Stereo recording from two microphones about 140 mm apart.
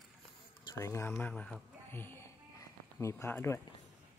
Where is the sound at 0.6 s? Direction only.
20° left (ahead or behind).